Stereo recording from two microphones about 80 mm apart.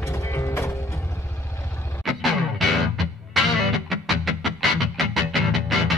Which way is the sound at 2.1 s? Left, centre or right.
Centre.